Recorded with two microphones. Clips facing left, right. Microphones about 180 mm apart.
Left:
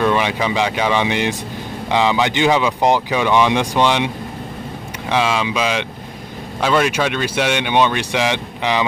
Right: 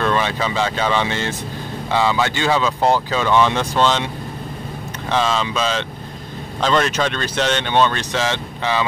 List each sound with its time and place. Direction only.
0.0 s speech: 15° left (ahead or behind)
5.1 s speech: 10° left (ahead or behind)